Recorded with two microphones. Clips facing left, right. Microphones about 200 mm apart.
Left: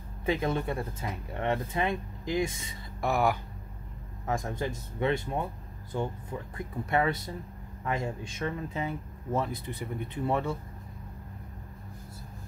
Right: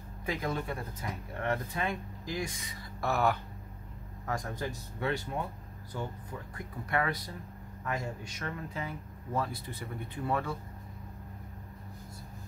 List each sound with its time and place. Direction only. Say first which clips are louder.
0.2 s speech: left 5 dB; 25° left (ahead or behind)